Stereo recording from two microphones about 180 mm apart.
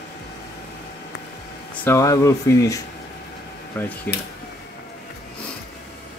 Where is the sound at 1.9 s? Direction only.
20° left (ahead or behind).